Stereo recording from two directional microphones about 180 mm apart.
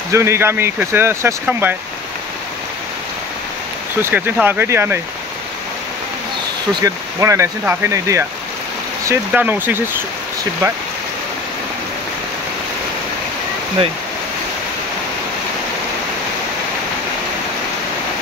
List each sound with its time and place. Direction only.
0.1 s speech: 15° right (ahead or behind)
4.0 s speech: 10° right (ahead or behind)
6.7 s speech: 15° right (ahead or behind)